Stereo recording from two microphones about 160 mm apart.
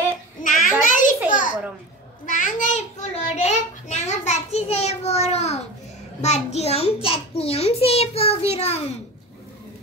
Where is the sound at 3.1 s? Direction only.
45° left (ahead or behind).